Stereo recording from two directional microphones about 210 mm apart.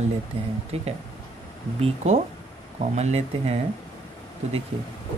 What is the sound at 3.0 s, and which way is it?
Speech, 30° right (ahead or behind).